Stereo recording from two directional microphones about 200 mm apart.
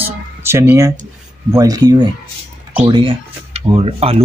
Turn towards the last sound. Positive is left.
turn(degrees=-30)  # may be behind; listen again after turning